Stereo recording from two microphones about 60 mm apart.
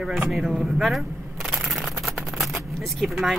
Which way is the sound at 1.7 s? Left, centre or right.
Centre.